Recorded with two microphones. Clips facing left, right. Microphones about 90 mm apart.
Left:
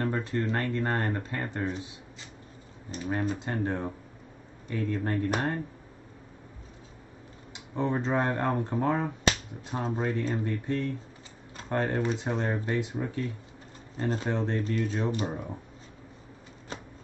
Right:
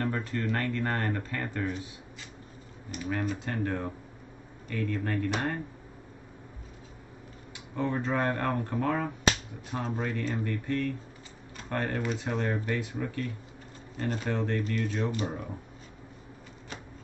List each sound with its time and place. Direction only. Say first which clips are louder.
0.0 s speech: left 2 dB; 20° left (ahead or behind)
2.9 s speech: left 2 dB; 30° left (ahead or behind)
7.5 s speech: left 2 dB; 20° left (ahead or behind)